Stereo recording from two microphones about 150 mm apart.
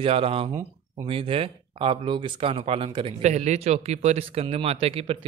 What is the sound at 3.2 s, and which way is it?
Speech, 50° right (ahead or behind).